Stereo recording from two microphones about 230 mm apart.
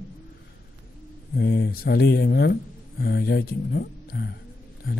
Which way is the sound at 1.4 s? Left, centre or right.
Left.